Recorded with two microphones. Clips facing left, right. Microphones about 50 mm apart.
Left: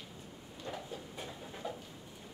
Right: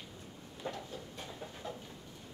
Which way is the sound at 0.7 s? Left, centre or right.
Centre.